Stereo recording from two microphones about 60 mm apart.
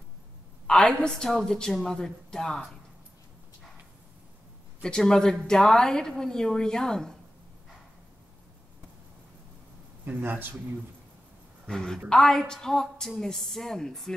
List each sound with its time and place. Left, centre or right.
0.7 s a woman's voice: centre
4.8 s a woman's voice: centre
10.0 s speech: right
11.6 s a woman's voice: centre